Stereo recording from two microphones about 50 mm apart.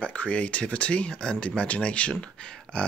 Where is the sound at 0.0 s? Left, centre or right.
Left.